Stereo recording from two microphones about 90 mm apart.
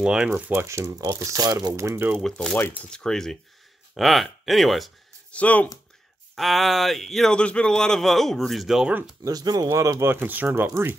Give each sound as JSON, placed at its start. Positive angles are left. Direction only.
{"t": 0.0, "sound": "speech", "side_deg": -10}
{"t": 0.3, "sound": "speech", "side_deg": -30}
{"t": 1.7, "sound": "speech", "side_deg": -30}
{"t": 2.2, "sound": "a man's voice", "side_deg": 5}
{"t": 5.3, "sound": "speech", "side_deg": 15}
{"t": 6.3, "sound": "a man's voice", "side_deg": 0}
{"t": 9.2, "sound": "speech", "side_deg": -45}
{"t": 9.7, "sound": "speech", "side_deg": -35}